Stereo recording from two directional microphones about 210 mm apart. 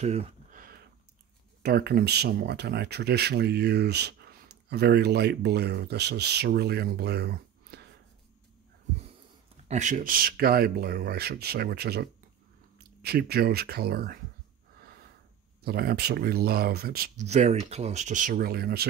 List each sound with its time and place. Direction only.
0.0 s a sound: 35° right (ahead or behind)
1.6 s speech: 50° right (ahead or behind)
9.7 s speech: 35° right (ahead or behind)
15.6 s speech: 50° right (ahead or behind)
17.3 s speech: 30° right (ahead or behind); by 18.9 s 50° right (ahead or behind)